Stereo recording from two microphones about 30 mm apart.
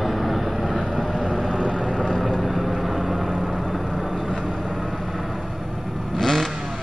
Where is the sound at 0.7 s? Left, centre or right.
Right.